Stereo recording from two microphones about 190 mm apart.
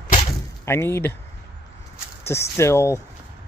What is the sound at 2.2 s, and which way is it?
Speech, 15° left (ahead or behind).